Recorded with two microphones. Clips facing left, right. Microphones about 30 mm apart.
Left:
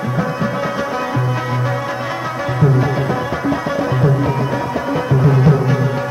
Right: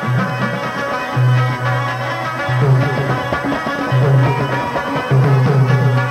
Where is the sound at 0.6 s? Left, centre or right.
Centre.